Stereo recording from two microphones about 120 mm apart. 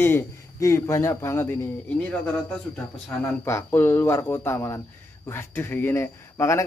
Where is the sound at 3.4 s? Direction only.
20° left (ahead or behind).